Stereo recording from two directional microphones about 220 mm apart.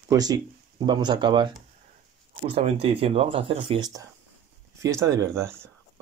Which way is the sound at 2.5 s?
25° right (ahead or behind).